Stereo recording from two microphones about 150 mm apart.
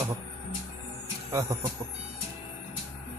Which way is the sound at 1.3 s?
20° right (ahead or behind).